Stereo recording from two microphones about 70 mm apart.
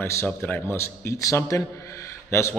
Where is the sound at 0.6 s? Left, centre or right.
Left.